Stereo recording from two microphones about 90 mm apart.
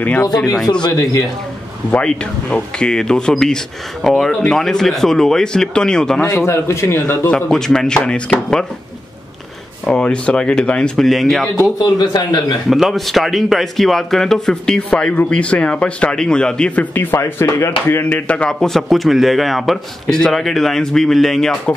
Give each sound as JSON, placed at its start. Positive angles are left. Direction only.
{"t": 0.0, "sound": "speech", "side_deg": 20}
{"t": 0.8, "sound": "speech", "side_deg": 40}
{"t": 1.9, "sound": "speech", "side_deg": 15}
{"t": 6.4, "sound": "a man's voice", "side_deg": 30}
{"t": 7.2, "sound": "speech", "side_deg": 10}
{"t": 9.8, "sound": "speech", "side_deg": 10}
{"t": 11.8, "sound": "a man's voice", "side_deg": 50}
{"t": 12.6, "sound": "speech", "side_deg": 0}
{"t": 16.9, "sound": "speech", "side_deg": 25}